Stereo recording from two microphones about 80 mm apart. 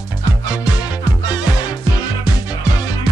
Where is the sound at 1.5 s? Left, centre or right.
Left.